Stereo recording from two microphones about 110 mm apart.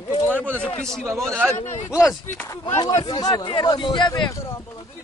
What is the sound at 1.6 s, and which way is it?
Speech, 90° left.